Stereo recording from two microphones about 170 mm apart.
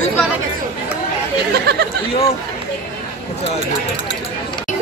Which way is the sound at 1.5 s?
75° right (ahead or behind).